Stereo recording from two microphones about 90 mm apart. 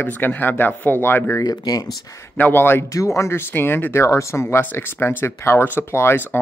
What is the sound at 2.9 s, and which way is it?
Speech, 35° left (ahead or behind).